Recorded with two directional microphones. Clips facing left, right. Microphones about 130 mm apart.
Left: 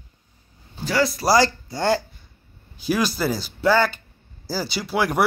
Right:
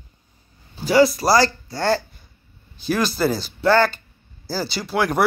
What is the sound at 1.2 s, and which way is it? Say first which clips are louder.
Speech: right 1 dB; 15° left (ahead or behind).